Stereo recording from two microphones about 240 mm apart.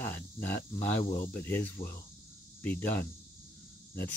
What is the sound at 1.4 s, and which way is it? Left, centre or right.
Speech, centre.